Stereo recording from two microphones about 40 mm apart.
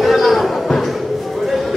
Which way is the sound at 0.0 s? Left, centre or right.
Centre.